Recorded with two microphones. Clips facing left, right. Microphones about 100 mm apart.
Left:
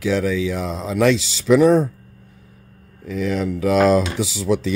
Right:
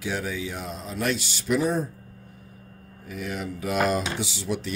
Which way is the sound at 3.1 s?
90° left.